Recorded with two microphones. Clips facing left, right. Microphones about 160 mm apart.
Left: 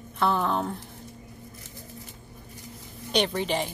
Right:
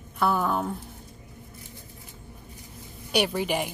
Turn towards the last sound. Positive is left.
turn(degrees=-10)  # may be behind; listen again after turning